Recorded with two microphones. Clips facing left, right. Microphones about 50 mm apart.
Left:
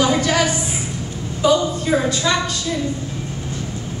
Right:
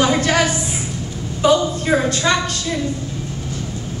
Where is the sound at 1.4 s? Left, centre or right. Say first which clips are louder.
Right 1 dB; right.